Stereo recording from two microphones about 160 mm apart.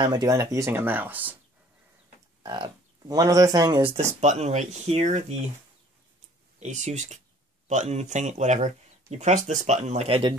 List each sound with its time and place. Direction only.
0.0 s speech: 25° right (ahead or behind)
2.4 s speech: 25° right (ahead or behind); by 5.2 s 45° right (ahead or behind)
6.6 s speech: 45° right (ahead or behind)